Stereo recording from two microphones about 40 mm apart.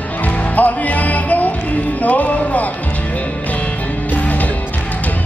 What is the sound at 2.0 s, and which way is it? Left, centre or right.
Speech, left.